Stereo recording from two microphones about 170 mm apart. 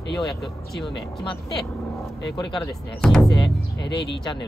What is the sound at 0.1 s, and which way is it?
Speech, centre (ahead or behind).